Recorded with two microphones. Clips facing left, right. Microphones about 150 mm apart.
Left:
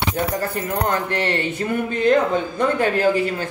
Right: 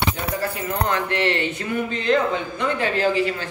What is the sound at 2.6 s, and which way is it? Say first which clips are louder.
Speech: left 4 dB; 45° left (ahead or behind).